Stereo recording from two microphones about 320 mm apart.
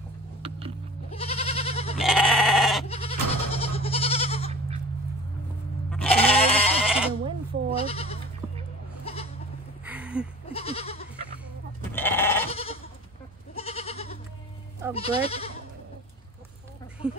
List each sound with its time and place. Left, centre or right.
1.1 s goat: centre
2.0 s goat: centre
2.9 s goat: centre
5.9 s goat: centre
7.7 s goat: centre
9.8 s a sound: centre
10.5 s goat: centre
11.9 s goat: centre
12.4 s goat: centre
17.0 s a sound: centre